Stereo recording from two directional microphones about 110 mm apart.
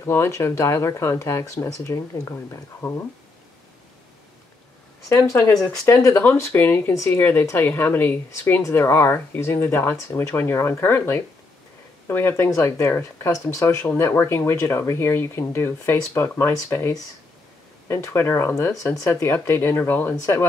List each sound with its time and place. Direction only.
0.0 s speech: 25° left (ahead or behind)
5.1 s speech: 30° left (ahead or behind)